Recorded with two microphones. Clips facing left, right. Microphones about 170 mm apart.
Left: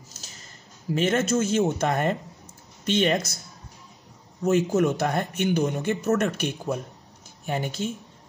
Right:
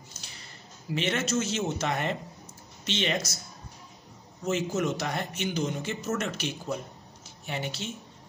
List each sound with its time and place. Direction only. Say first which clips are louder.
0.2 s a sound: left 1 dB; 40° left (ahead or behind)
0.9 s a man's voice: left 6 dB; 45° left (ahead or behind)
4.4 s a man's voice: left 7 dB; 55° left (ahead or behind)